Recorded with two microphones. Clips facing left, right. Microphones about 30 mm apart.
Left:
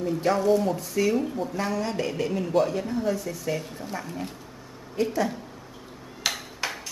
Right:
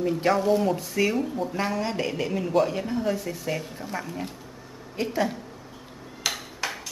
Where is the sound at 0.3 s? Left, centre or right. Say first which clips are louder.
Left 1 dB; centre.